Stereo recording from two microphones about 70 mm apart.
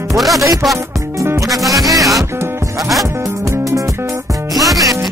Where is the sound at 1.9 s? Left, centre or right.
Right.